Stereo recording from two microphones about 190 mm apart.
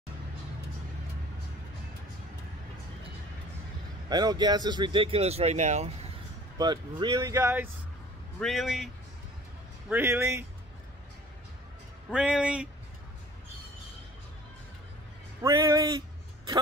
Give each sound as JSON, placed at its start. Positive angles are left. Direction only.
{"t": 4.1, "sound": "speech", "side_deg": -20}
{"t": 6.6, "sound": "speech", "side_deg": -20}
{"t": 8.4, "sound": "a man's voice", "side_deg": 0}
{"t": 9.8, "sound": "speech", "side_deg": -10}
{"t": 12.1, "sound": "a man's voice", "side_deg": -5}
{"t": 15.4, "sound": "speech", "side_deg": -20}